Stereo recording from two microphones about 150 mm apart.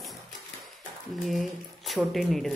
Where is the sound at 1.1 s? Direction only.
Centre (ahead or behind).